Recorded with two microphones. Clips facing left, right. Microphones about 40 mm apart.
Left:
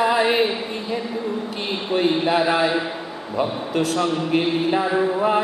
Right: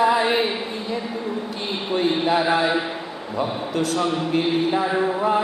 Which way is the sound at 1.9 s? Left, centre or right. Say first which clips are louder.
Left 1 dB; centre.